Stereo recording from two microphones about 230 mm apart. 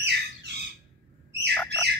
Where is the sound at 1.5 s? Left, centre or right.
Centre.